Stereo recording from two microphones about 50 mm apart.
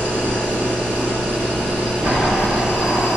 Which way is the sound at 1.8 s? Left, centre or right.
Centre.